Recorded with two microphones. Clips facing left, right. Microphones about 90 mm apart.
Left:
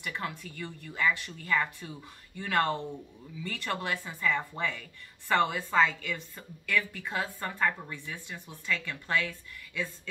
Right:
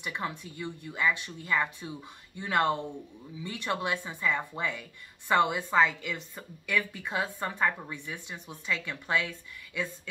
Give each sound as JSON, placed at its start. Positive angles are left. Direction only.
{"t": 0.0, "sound": "a woman's voice", "side_deg": -20}